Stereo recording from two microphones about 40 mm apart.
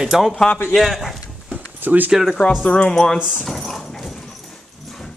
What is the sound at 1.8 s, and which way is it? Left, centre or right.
Speech, right.